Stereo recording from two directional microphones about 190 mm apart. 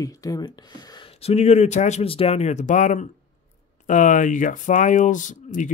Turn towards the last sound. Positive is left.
turn(degrees=40)  # may be behind; listen again after turning